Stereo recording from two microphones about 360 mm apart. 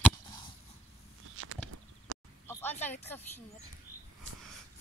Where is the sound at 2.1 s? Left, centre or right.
Right.